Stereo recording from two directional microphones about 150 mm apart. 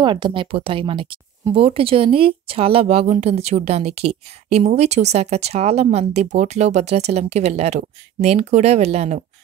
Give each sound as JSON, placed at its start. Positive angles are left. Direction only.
{"t": 0.0, "sound": "speech", "side_deg": -35}